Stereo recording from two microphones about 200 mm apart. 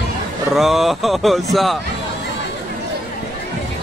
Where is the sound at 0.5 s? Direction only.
Centre (ahead or behind).